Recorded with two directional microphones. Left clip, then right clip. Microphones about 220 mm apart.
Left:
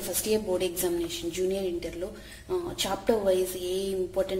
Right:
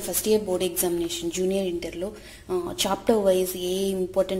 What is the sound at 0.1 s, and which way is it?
A woman's voice, 25° right (ahead or behind).